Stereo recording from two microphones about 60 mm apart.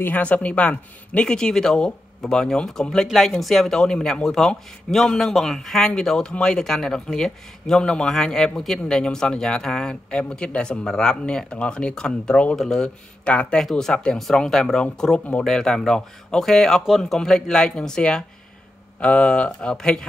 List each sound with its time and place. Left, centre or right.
0.0 s speech: left
13.6 s speech: centre